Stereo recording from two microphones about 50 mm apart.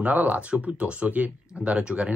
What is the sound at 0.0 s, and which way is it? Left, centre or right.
Speech, right.